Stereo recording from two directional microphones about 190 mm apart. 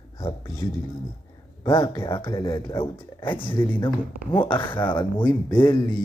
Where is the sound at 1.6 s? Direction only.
25° left (ahead or behind).